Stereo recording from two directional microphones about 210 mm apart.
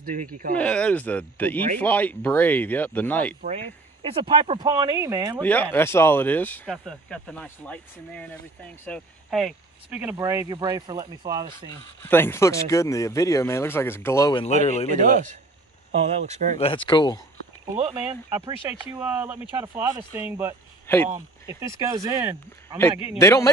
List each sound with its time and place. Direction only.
0.0 s speech: 40° right (ahead or behind)
0.6 s speech: 5° left (ahead or behind)
3.4 s speech: 25° right (ahead or behind)
5.4 s speech: 10° left (ahead or behind); by 11.7 s 20° right (ahead or behind)
12.0 s speech: 10° left (ahead or behind)
14.4 s speech: 30° left (ahead or behind)
14.9 s speech: 35° right (ahead or behind)
16.5 s speech: 25° left (ahead or behind)
17.7 s speech: 30° right (ahead or behind)
18.6 s speech: 15° right (ahead or behind)
20.8 s speech: 10° left (ahead or behind)
21.5 s speech: 15° right (ahead or behind)
23.1 s speech: 15° left (ahead or behind)